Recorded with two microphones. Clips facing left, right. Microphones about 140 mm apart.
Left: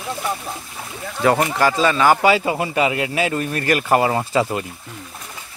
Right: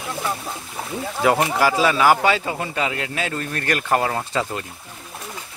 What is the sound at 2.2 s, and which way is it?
Speech, 10° left (ahead or behind).